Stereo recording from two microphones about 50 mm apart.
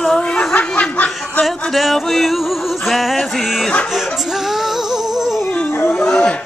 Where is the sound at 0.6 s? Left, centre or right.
Left.